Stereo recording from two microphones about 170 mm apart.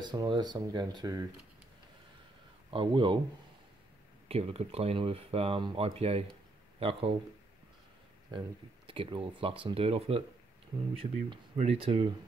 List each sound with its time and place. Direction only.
0.0 s speech: 25° right (ahead or behind)
2.7 s speech: 30° right (ahead or behind)
4.3 s speech: 35° right (ahead or behind)
8.3 s speech: 30° right (ahead or behind)